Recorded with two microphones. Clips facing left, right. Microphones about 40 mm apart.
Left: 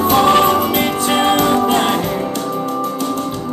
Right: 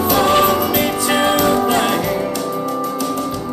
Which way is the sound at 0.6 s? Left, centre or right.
Left.